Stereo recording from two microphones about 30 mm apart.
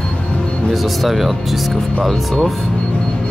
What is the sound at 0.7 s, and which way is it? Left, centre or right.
Speech, centre.